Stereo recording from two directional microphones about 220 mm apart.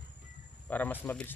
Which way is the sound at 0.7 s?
5° left (ahead or behind).